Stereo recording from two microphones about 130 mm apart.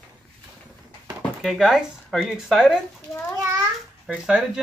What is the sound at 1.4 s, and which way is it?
Speech, centre (ahead or behind).